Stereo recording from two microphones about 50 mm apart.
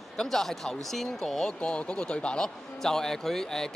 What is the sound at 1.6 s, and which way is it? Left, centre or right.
Speech, left.